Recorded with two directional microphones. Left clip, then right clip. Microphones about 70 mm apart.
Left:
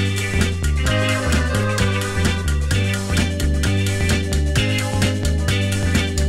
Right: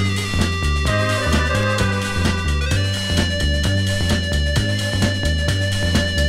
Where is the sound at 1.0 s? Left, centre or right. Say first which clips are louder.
Even; left.